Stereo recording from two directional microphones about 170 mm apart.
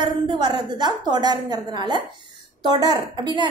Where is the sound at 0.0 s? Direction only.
25° right (ahead or behind).